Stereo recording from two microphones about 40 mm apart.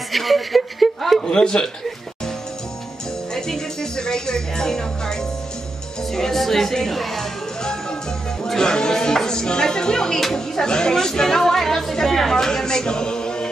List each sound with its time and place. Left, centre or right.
0.1 s a sound: centre
1.2 s a man's voice: left
3.3 s speech: centre
6.1 s speech: centre
8.5 s speech: centre